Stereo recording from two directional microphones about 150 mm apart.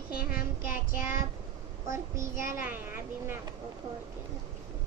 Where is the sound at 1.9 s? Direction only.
20° right (ahead or behind).